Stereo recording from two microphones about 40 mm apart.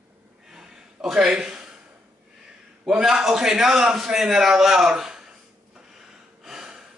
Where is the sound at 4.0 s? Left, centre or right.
Centre.